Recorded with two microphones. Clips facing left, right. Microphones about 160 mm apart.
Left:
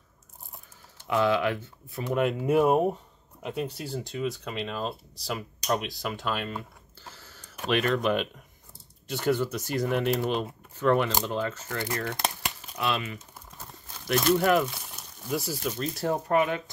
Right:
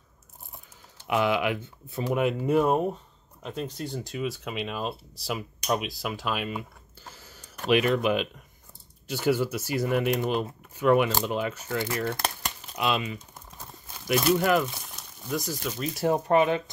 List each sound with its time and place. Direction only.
1.0 s speech: 15° right (ahead or behind)
2.0 s speech: 5° right (ahead or behind)
7.1 s a sound: 15° right (ahead or behind)
7.6 s speech: 15° right (ahead or behind)
12.0 s speech: 20° left (ahead or behind)
12.7 s speech: 20° right (ahead or behind); by 14.7 s centre (ahead or behind)
14.9 s a sound: 5° left (ahead or behind)
16.0 s speech: 20° right (ahead or behind)